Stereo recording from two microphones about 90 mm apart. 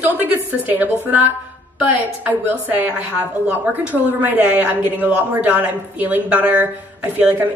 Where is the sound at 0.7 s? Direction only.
20° right (ahead or behind).